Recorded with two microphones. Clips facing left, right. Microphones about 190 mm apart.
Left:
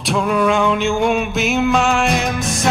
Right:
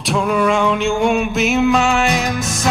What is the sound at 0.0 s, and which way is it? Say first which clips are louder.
Music: even; centre (ahead or behind).